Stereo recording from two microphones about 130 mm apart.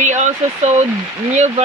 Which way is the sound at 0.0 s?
65° right (ahead or behind).